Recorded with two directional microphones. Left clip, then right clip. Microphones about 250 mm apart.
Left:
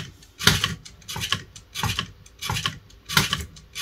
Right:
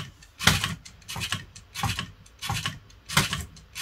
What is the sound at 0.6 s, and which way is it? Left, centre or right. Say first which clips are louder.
Typing: left 4 dB; centre.